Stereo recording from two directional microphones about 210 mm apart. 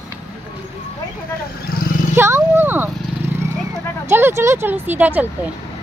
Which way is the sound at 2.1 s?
10° right (ahead or behind).